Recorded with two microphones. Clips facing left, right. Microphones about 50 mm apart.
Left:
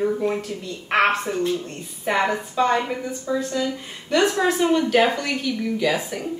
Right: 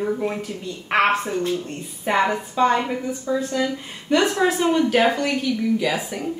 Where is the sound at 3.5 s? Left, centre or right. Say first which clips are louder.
Right 1 dB; centre.